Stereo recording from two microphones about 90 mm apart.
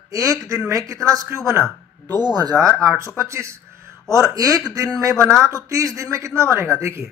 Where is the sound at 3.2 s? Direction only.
30° right (ahead or behind).